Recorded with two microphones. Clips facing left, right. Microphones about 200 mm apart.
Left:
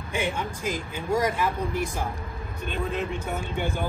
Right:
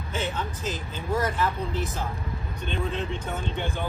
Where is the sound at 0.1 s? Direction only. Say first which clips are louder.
Left 2 dB; 15° left (ahead or behind).